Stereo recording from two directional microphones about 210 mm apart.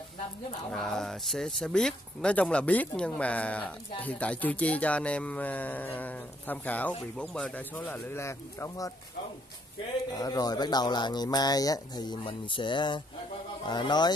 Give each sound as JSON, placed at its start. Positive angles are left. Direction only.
{"t": 0.7, "sound": "speech", "side_deg": 0}
{"t": 10.1, "sound": "speech", "side_deg": 20}